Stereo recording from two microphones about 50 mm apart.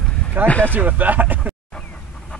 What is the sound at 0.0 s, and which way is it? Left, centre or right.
Vehicle, centre.